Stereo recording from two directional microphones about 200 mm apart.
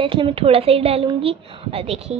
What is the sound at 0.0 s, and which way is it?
A woman's voice, 25° right (ahead or behind).